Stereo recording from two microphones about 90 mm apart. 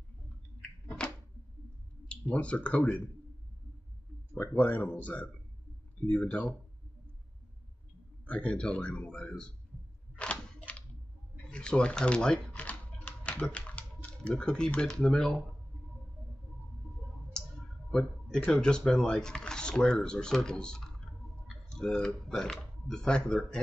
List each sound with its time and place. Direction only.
0.6 s a sound: 10° left (ahead or behind)
2.0 s speech: 15° left (ahead or behind)
4.3 s speech: 20° left (ahead or behind)
8.3 s speech: 15° left (ahead or behind)
10.6 s a sound: 15° left (ahead or behind)
11.5 s typewriter: 10° left (ahead or behind)
14.0 s speech: 10° left (ahead or behind)
17.3 s speech: 10° left (ahead or behind)